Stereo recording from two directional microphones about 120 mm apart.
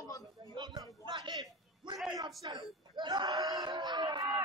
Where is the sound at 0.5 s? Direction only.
35° right (ahead or behind).